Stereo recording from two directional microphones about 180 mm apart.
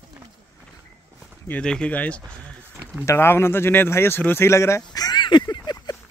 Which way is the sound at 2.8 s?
10° right (ahead or behind).